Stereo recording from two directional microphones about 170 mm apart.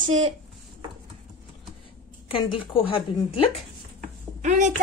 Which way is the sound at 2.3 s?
30° left (ahead or behind).